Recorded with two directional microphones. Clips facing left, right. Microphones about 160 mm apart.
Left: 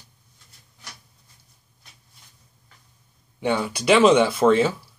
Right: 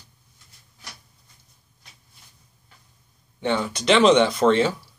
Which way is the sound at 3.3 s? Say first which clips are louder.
Left 1 dB; 10° left (ahead or behind).